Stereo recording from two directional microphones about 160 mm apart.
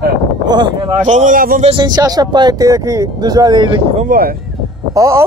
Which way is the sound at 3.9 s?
55° right (ahead or behind).